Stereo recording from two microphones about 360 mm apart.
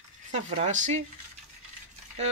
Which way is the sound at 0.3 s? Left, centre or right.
Centre.